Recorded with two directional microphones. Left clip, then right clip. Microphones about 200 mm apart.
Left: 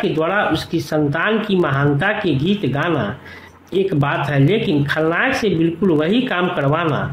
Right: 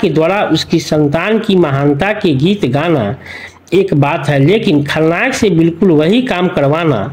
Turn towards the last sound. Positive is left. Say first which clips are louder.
# right 6 dB
turn(degrees=-30)  # may be behind; listen again after turning